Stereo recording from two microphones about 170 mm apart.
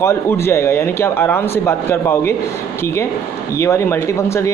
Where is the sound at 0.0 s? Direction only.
15° left (ahead or behind).